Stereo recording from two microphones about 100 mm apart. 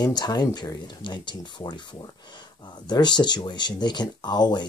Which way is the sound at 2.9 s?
45° left (ahead or behind).